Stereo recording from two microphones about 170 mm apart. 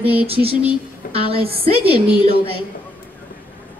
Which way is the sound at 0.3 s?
35° right (ahead or behind).